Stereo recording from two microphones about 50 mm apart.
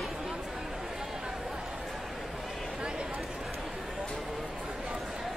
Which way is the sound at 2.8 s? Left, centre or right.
Centre.